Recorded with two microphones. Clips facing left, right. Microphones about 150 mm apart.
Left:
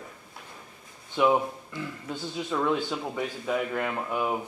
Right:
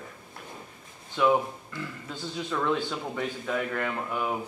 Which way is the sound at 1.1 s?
15° left (ahead or behind).